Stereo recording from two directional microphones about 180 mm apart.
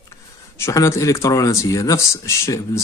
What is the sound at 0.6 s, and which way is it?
Speech, 15° left (ahead or behind).